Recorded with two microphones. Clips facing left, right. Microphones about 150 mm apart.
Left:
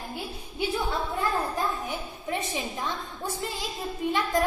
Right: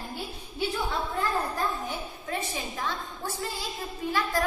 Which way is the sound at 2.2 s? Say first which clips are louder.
Left 3 dB; 20° left (ahead or behind).